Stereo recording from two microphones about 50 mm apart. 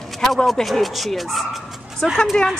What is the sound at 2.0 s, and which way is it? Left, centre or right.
Speech, centre.